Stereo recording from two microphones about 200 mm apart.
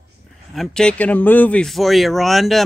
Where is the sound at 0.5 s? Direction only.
Centre (ahead or behind).